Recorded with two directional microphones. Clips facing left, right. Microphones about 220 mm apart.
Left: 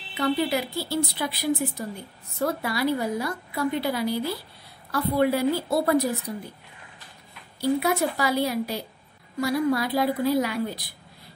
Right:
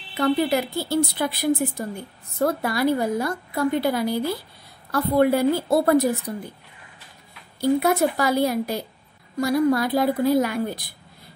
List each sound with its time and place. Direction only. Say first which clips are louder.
0.1 s a woman's voice: right 4 dB; 50° right (ahead or behind)
7.8 s a woman's voice: right 4 dB; 50° right (ahead or behind)